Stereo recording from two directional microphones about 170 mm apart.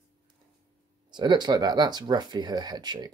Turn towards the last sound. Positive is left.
turn(degrees=-25)  # may be behind; listen again after turning